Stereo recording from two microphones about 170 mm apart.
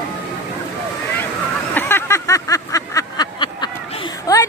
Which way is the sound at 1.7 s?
15° left (ahead or behind).